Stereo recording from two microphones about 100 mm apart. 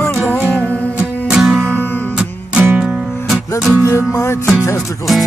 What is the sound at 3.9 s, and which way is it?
Music, 30° left (ahead or behind).